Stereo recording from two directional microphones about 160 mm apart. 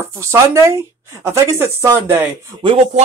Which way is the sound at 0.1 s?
15° right (ahead or behind).